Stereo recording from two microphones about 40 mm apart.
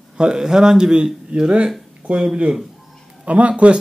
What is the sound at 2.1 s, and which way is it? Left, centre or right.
Speech, right.